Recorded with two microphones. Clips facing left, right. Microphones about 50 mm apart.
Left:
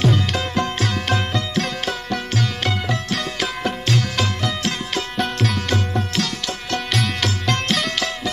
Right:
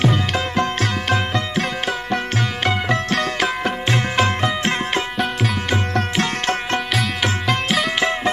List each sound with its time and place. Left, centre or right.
0.0 s music: right
3.1 s music: right
3.4 s music: right
6.1 s music: right
7.4 s music: centre